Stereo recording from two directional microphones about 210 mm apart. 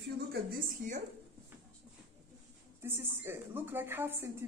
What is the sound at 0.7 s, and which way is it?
Speech, 40° right (ahead or behind).